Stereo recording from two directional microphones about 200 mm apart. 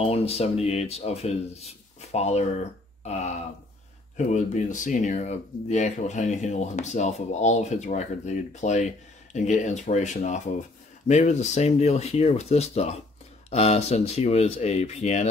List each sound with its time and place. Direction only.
0.0 s speech: 30° left (ahead or behind)
3.0 s a sound: 35° left (ahead or behind)
4.3 s speech: 40° left (ahead or behind)